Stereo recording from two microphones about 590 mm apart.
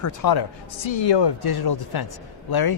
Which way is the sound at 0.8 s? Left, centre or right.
Left.